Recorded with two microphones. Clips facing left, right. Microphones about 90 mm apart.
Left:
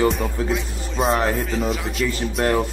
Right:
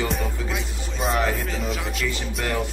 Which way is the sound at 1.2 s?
35° left (ahead or behind).